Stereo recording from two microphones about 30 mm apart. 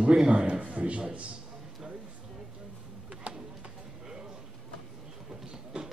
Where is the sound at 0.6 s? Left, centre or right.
Right.